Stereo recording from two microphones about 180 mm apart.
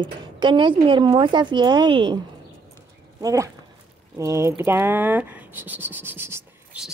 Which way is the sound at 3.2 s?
15° right (ahead or behind).